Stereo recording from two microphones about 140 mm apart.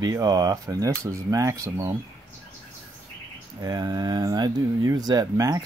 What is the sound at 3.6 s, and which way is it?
Speech, 25° right (ahead or behind).